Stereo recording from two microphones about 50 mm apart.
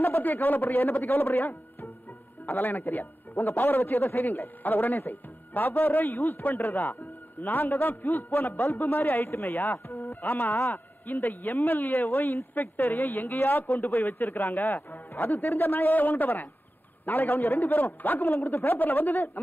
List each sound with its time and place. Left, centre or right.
0.0 s a man's voice: left